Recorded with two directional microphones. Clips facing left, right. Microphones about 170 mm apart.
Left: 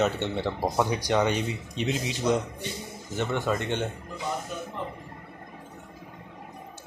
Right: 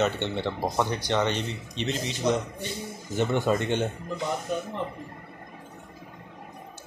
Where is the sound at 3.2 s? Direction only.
15° right (ahead or behind).